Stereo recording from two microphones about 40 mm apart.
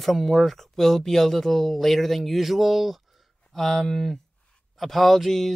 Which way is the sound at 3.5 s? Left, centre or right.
Centre.